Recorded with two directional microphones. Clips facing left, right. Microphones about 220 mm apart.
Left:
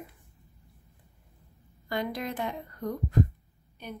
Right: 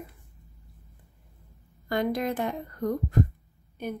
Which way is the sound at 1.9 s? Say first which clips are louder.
Right 5 dB; 50° right (ahead or behind).